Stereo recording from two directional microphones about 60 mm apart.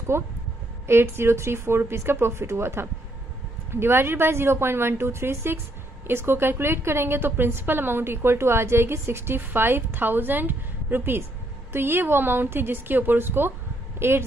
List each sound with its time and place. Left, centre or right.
0.1 s a woman's voice: right